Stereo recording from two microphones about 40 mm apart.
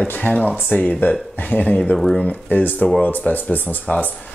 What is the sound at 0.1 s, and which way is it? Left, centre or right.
Speech, left.